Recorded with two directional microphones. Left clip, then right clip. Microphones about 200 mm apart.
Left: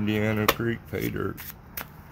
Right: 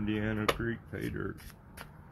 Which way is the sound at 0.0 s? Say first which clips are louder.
Left 7 dB; 40° left (ahead or behind).